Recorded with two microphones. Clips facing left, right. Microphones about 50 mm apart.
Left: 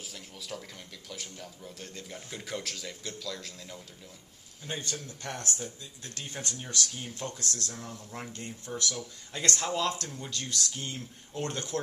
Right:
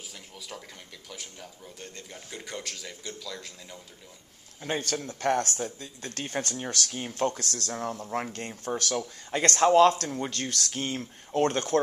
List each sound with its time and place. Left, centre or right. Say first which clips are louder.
0.1 s speech: left 3 dB; centre
4.6 s speech: right 7 dB; right
6.5 s speech: right 3 dB; right
11.4 s speech: right 9 dB; right